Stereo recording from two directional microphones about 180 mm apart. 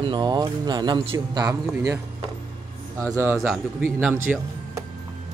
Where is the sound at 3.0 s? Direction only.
15° right (ahead or behind).